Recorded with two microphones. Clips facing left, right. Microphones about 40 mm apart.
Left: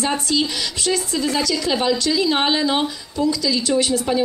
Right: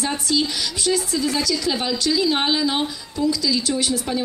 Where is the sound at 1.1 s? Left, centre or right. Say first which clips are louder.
Left 1 dB; centre.